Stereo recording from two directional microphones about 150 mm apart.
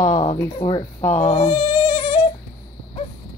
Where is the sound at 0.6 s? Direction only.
35° left (ahead or behind).